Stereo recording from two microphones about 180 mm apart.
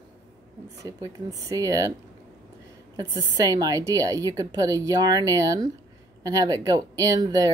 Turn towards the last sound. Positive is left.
turn(degrees=-20)  # may be behind; listen again after turning